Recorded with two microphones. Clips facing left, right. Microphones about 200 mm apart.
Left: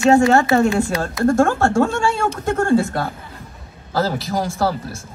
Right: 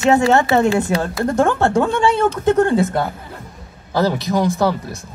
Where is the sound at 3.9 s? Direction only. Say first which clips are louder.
Right 3 dB; 20° right (ahead or behind).